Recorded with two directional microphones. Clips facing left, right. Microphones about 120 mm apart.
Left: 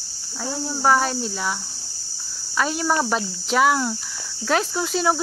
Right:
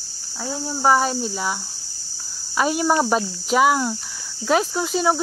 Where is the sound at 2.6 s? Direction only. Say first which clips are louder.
Right 3 dB; 10° right (ahead or behind).